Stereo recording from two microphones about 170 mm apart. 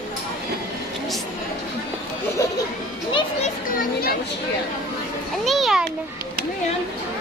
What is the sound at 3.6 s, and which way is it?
Children playing, 60° left (ahead or behind).